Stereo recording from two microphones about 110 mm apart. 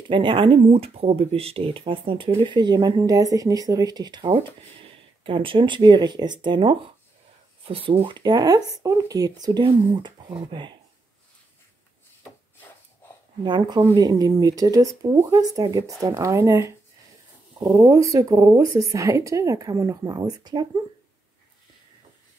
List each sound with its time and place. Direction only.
0.1 s speech: 50° right (ahead or behind)
0.7 s speech: 65° right (ahead or behind); by 4.3 s 40° right (ahead or behind)
5.2 s speech: 50° right (ahead or behind)
7.6 s a woman's voice: 60° right (ahead or behind)
13.4 s a woman's voice: 45° right (ahead or behind)